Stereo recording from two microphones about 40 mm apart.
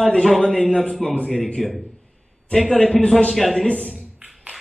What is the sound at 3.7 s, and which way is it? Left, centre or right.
Speech, left.